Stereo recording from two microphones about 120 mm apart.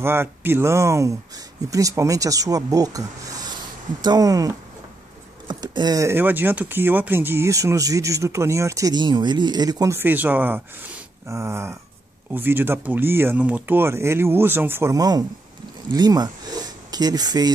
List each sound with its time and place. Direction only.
0.0 s speech: 20° right (ahead or behind)
9.9 s speech: 15° right (ahead or behind); by 17.5 s 35° right (ahead or behind)